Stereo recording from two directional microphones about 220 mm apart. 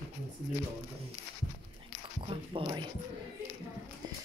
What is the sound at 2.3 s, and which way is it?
Speech, 25° right (ahead or behind).